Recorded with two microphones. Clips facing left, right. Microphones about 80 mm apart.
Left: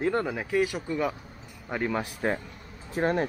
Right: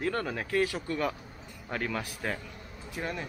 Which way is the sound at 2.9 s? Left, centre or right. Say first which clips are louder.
Left 10 dB; left.